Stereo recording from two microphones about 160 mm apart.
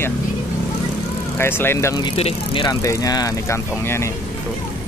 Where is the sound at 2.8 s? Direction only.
20° left (ahead or behind).